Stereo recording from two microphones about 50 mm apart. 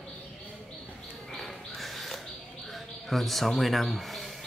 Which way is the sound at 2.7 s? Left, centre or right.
Centre.